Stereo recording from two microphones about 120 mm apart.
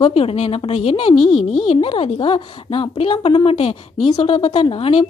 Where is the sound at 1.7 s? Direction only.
50° left (ahead or behind).